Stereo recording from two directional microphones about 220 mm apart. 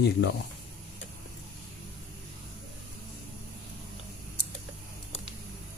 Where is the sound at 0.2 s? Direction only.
50° left (ahead or behind).